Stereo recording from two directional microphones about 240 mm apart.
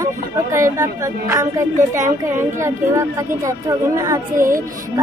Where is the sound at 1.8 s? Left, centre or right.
Right.